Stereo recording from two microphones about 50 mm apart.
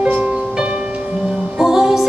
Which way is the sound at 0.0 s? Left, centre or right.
Right.